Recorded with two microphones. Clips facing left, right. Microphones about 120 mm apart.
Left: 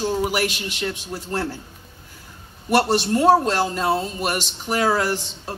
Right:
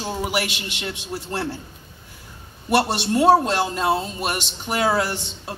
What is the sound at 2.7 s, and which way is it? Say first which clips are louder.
A man's voice: left 1 dB; 15° right (ahead or behind).